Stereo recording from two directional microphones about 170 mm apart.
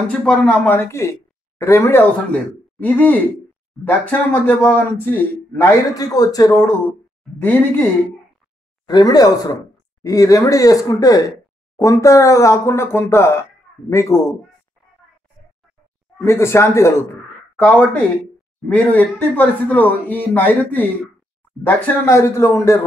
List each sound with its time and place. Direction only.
0.1 s speech: 5° left (ahead or behind)
8.8 s speech: 25° left (ahead or behind)
16.2 s speech: 15° left (ahead or behind)